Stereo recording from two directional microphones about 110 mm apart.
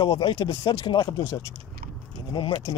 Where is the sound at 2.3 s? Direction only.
45° left (ahead or behind).